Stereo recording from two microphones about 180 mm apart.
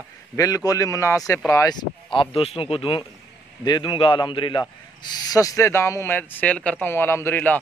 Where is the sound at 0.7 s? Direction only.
20° left (ahead or behind).